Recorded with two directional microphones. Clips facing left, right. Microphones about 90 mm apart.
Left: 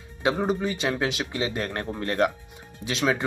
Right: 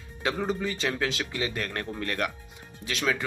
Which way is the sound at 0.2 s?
20° left (ahead or behind).